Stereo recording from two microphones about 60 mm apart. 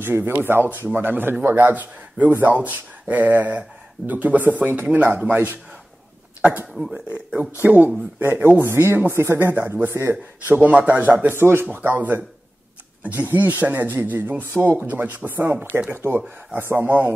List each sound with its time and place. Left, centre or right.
0.0 s speech: right
6.9 s speech: centre
7.6 s speech: right
10.1 s speech: right
11.3 s speech: right
11.6 s speech: right